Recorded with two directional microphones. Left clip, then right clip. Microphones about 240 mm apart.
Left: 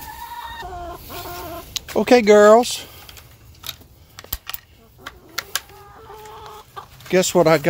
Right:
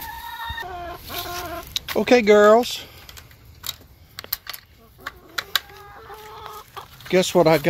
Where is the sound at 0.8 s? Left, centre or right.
Centre.